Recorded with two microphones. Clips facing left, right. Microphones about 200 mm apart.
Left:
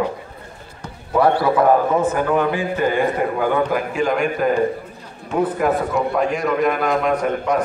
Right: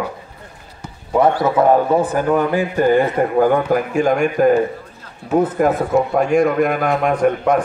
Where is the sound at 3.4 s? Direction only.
45° right (ahead or behind).